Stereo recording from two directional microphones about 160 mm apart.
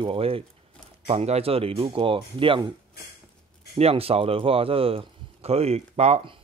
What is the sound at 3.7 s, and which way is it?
Speech, 40° right (ahead or behind).